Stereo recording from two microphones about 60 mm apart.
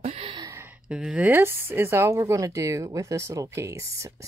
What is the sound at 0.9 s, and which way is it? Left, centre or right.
Speech, centre.